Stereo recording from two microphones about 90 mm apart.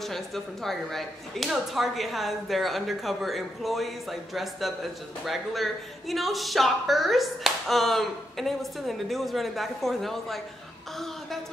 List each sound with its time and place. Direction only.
0.0 s speech: 5° left (ahead or behind)